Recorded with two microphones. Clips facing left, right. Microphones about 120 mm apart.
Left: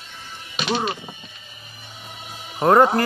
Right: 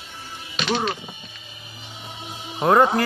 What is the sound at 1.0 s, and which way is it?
Music, 20° right (ahead or behind).